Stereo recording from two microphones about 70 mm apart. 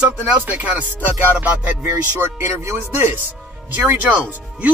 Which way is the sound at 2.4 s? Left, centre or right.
Right.